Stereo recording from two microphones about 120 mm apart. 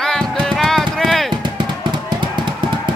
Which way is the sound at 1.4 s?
40° right (ahead or behind).